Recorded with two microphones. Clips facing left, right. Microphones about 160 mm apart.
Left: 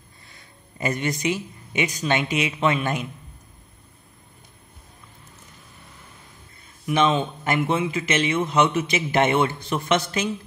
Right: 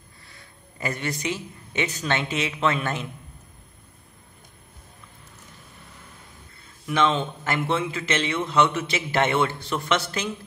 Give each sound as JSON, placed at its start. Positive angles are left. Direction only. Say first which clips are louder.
{"t": 0.7, "sound": "a man's voice", "louder": "left 4 dB", "side_deg": 20}
{"t": 6.9, "sound": "a man's voice", "louder": "left 2 dB", "side_deg": 20}